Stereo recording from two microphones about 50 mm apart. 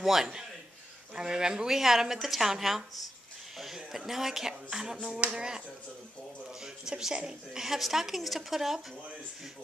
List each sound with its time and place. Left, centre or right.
0.0 s a woman's voice: centre
6.9 s a woman's voice: centre